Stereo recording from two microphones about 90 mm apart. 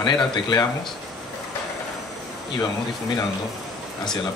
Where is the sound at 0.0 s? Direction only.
55° left (ahead or behind).